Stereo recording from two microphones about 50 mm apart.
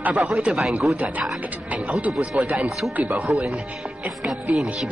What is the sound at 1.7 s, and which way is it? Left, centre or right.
Speech, right.